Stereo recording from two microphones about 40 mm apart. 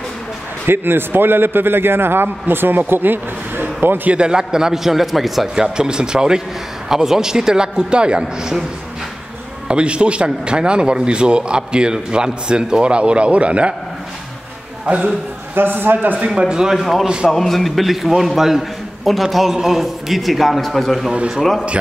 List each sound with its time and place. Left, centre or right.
0.7 s a man's voice: right
4.1 s a man's voice: right; by 5.5 s centre
5.6 s a man's voice: right
9.7 s a man's voice: right
14.9 s a man's voice: right
15.5 s a man's voice: right
16.3 s a man's voice: centre
16.7 s a man's voice: centre
17.0 s a man's voice: right
17.3 s a man's voice: centre